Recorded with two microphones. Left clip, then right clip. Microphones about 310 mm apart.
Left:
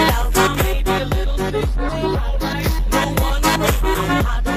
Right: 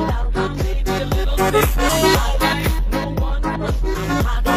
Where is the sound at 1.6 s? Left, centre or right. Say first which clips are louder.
Right 7 dB; right.